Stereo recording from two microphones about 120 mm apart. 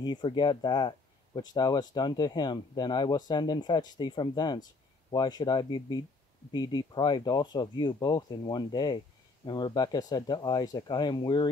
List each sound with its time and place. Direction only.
0.0 s speech: 35° left (ahead or behind)